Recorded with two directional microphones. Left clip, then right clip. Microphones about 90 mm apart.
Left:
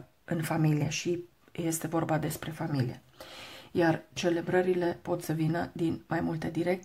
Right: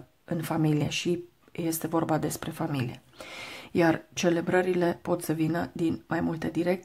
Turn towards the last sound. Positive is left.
turn(degrees=-25)  # may be behind; listen again after turning